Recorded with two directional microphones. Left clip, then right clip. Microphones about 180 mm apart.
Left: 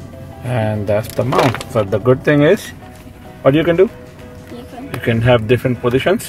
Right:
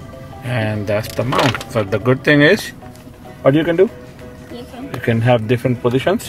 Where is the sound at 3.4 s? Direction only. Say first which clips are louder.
Left 1 dB; 10° left (ahead or behind).